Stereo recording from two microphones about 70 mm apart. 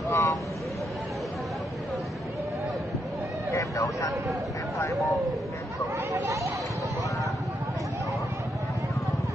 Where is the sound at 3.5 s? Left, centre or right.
Left.